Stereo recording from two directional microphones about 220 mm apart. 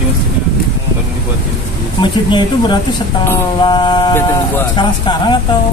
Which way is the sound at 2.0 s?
20° left (ahead or behind).